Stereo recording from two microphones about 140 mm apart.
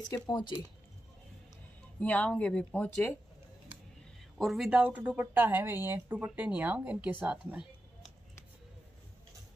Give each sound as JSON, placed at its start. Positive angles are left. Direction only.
{"t": 0.1, "sound": "speech", "side_deg": 30}
{"t": 2.0, "sound": "speech", "side_deg": 10}
{"t": 4.4, "sound": "speech", "side_deg": 0}